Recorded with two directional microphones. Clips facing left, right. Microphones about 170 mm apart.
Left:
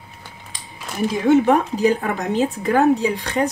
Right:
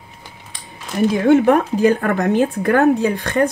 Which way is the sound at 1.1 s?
55° right (ahead or behind).